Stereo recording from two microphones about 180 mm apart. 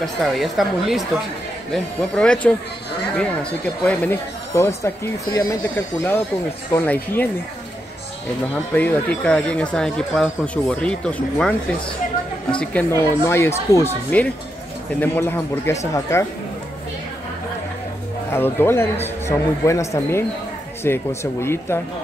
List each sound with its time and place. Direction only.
0.0 s speech: centre (ahead or behind)
3.8 s speech: 10° left (ahead or behind)
8.7 s speech: 10° left (ahead or behind)
18.3 s speech: 10° left (ahead or behind)